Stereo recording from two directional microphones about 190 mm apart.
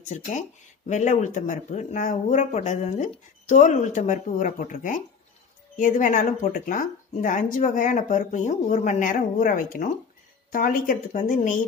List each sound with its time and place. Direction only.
0.0 s speech: 40° left (ahead or behind)